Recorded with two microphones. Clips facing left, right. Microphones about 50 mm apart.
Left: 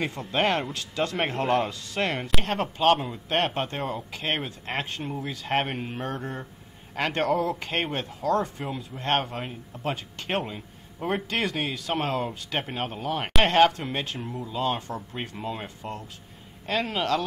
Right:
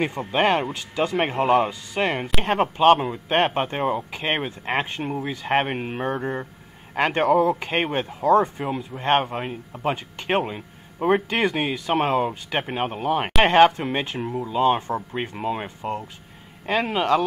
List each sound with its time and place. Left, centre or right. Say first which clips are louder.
0.0 s speech: right 4 dB; right
5.8 s a sound: right 6 dB; right
7.0 s speech: right 6 dB; centre